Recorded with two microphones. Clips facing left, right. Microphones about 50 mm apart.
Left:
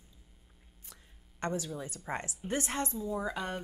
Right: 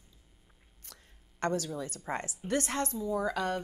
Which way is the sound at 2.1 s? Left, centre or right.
Centre.